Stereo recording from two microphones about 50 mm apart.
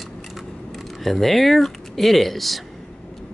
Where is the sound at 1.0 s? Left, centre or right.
Centre.